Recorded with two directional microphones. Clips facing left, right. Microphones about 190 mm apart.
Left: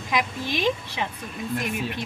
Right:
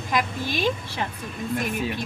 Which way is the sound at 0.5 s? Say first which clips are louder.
Left 1 dB; 20° left (ahead or behind).